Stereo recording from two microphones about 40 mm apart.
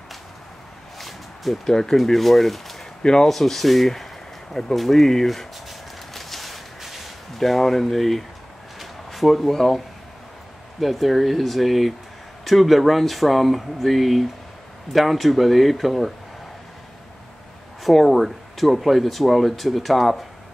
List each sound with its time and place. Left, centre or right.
0.9 s a sound: centre
1.7 s speech: centre
2.0 s speech: centre
3.0 s speech: centre
3.3 s speech: centre
4.6 s a sound: centre
7.3 s speech: centre
8.7 s a sound: centre
10.8 s speech: centre
17.8 s speech: centre